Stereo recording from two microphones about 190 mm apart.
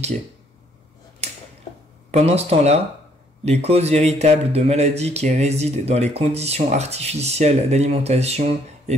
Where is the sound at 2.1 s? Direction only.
30° right (ahead or behind).